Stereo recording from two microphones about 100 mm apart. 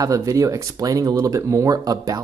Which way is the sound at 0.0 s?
35° right (ahead or behind).